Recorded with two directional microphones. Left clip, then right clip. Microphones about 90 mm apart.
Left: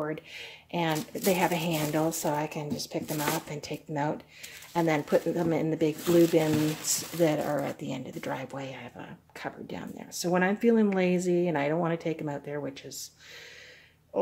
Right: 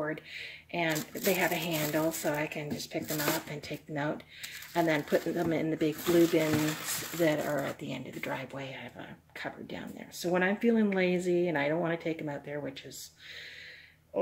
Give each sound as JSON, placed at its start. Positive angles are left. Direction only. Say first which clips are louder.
{"t": 0.0, "sound": "speech", "louder": "left 1 dB", "side_deg": 30}